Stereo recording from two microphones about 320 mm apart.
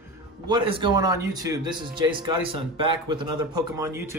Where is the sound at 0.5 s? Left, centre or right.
Centre.